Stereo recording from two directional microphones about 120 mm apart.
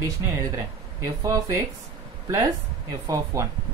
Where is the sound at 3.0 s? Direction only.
25° right (ahead or behind).